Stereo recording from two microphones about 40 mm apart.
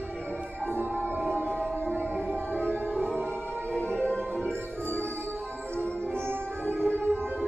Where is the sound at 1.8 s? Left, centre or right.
Left.